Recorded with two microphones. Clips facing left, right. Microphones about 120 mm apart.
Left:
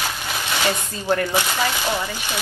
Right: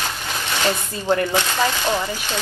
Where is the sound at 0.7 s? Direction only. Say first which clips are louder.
Right 2 dB; 15° right (ahead or behind).